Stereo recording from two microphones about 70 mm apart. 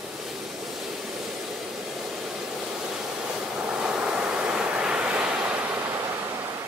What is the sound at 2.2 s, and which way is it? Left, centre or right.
Vehicle, centre.